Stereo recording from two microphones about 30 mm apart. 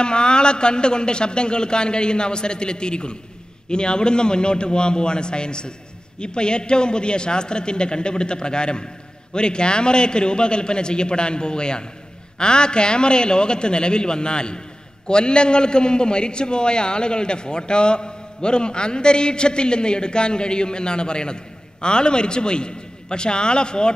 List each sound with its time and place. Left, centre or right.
0.0 s a man's voice: left